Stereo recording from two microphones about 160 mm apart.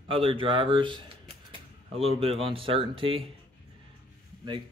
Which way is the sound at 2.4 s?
35° right (ahead or behind).